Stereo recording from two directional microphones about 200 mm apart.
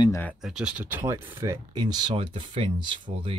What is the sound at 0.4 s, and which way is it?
Speech, 5° right (ahead or behind).